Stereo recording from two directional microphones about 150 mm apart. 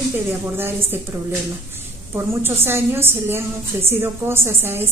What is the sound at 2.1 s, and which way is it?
A woman's voice, 15° right (ahead or behind).